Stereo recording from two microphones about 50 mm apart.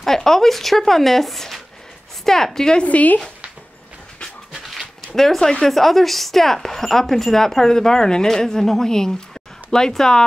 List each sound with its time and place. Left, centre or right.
0.0 s speech: centre
2.8 s speech: left
4.5 s dog: centre
5.0 s speech: centre